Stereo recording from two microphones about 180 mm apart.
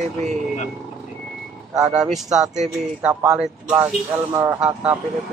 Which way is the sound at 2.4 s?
40° right (ahead or behind).